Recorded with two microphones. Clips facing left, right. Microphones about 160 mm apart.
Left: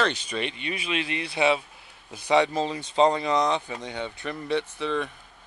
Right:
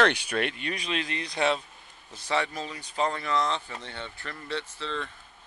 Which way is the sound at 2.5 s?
25° left (ahead or behind).